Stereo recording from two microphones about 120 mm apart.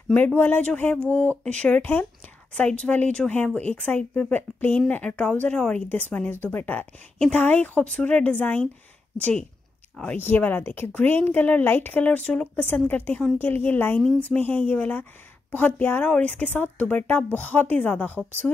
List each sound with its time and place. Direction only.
0.1 s speech: 15° left (ahead or behind)